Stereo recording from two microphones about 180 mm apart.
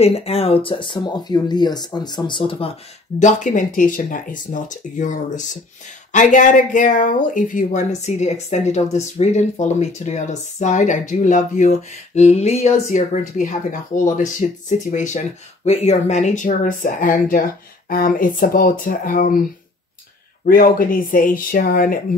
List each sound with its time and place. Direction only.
0.0 s speech: 35° left (ahead or behind)
3.2 s speech: 45° left (ahead or behind)
20.4 s speech: 55° left (ahead or behind)